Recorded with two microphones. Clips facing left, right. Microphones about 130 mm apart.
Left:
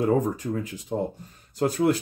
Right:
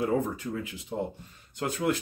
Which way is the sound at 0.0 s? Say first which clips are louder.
Left 5 dB; 40° left (ahead or behind).